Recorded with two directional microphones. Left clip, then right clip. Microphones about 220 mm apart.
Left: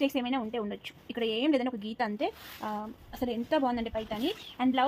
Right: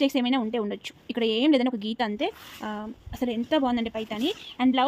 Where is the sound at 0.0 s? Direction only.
45° right (ahead or behind).